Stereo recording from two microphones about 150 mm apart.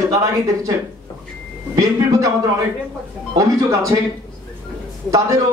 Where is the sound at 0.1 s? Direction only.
20° right (ahead or behind).